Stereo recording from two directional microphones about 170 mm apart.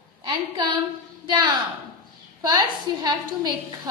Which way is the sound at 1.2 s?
25° right (ahead or behind).